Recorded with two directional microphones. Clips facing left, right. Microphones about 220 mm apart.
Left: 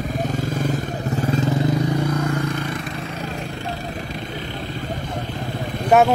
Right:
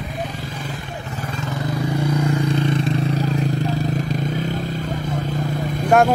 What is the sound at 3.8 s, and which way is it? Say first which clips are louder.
Motorcycle: right 7 dB; 45° right (ahead or behind).